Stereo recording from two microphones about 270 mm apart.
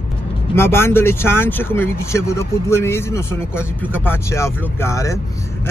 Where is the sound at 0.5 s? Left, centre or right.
Centre.